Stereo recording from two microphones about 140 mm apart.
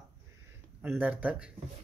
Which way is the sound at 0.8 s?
15° right (ahead or behind).